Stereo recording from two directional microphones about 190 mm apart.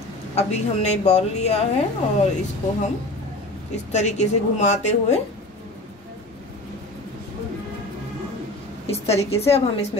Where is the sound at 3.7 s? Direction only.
35° left (ahead or behind).